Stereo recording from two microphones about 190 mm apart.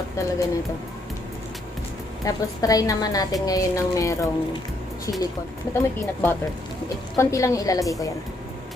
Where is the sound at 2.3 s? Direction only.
20° left (ahead or behind).